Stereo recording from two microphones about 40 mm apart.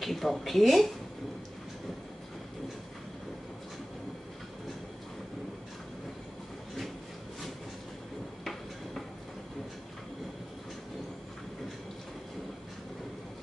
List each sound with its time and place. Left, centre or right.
0.0 s speech: centre